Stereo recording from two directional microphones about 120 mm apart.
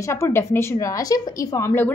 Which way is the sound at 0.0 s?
20° left (ahead or behind).